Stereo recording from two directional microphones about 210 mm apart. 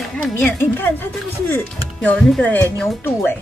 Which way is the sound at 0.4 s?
10° left (ahead or behind).